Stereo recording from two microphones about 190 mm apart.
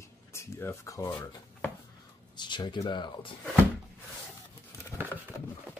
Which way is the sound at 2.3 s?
25° left (ahead or behind).